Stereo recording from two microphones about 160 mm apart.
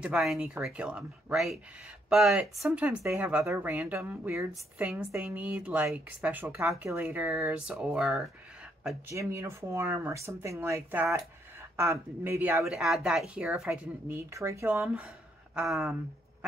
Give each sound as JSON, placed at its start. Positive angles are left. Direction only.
{"t": 0.0, "sound": "speech", "side_deg": -5}
{"t": 9.1, "sound": "speech", "side_deg": -20}
{"t": 12.6, "sound": "speech", "side_deg": 0}
{"t": 14.0, "sound": "speech", "side_deg": -15}
{"t": 15.5, "sound": "speech", "side_deg": 0}